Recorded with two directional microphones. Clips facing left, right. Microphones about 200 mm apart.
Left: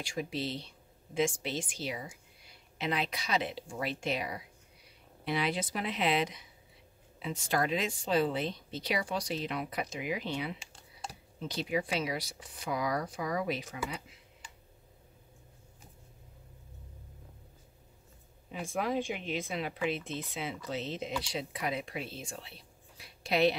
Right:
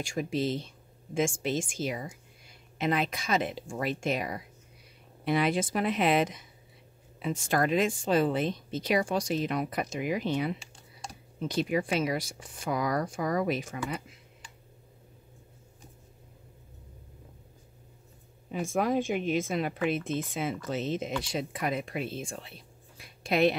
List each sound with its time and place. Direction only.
0.0 s speech: 45° right (ahead or behind)
18.5 s speech: 45° right (ahead or behind)
22.9 s a sound: 50° right (ahead or behind)